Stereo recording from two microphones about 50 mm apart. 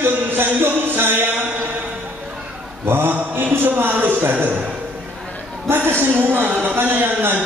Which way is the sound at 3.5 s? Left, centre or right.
Right.